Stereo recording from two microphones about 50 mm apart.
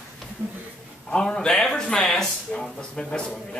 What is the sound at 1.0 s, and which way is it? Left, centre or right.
A man's voice, centre.